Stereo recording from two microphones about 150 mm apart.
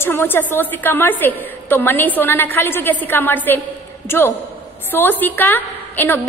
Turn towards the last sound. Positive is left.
turn(degrees=15)  # may be behind; listen again after turning